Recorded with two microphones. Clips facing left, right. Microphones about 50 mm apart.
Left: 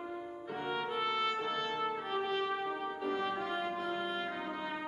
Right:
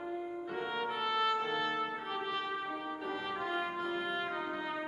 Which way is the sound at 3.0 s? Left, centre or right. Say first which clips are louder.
Left 3 dB; centre.